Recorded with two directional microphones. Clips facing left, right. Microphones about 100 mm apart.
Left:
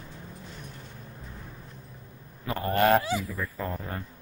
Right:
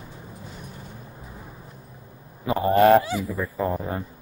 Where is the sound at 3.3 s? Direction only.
15° right (ahead or behind).